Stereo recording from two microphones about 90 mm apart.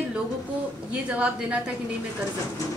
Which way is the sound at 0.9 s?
15° right (ahead or behind).